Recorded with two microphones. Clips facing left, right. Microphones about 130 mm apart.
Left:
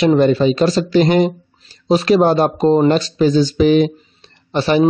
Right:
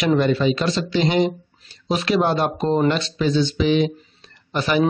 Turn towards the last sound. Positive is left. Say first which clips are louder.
# left 5 dB
turn(degrees=35)  # may be behind; listen again after turning